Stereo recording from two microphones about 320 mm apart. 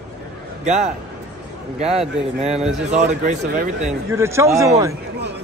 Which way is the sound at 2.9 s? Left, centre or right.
Right.